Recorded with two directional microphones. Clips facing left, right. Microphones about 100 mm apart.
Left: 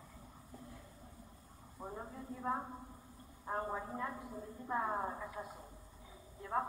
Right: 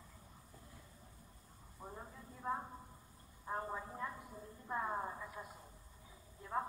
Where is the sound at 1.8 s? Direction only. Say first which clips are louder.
Left 5 dB; 25° left (ahead or behind).